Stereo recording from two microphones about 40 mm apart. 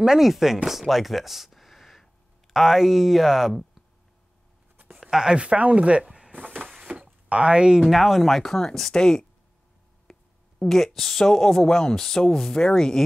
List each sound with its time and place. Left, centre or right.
0.2 s speech: centre
5.1 s speech: centre
5.4 s speech: right
6.9 s a sound: right
7.3 s speech: right
7.9 s speech: centre
10.1 s a sound: centre
10.6 s a woman's voice: centre